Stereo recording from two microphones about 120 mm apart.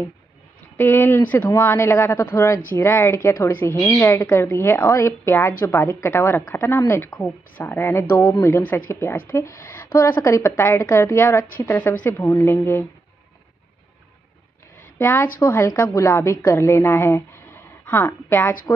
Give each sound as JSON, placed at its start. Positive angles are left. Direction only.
{"t": 0.7, "sound": "a woman's voice", "side_deg": 15}
{"t": 14.8, "sound": "a woman's voice", "side_deg": 20}